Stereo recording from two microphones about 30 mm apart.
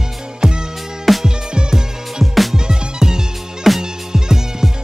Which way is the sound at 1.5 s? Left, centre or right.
Right.